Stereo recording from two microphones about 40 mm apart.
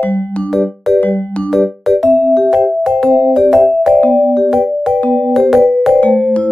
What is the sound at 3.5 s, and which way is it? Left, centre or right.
Music, centre.